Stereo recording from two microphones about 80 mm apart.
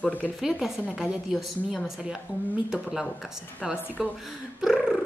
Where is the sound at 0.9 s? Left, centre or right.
Centre.